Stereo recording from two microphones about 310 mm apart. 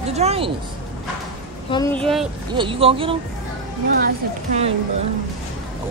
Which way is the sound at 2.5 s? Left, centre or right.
Centre.